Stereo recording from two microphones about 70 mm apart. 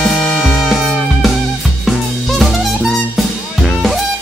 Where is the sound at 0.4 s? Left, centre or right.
Centre.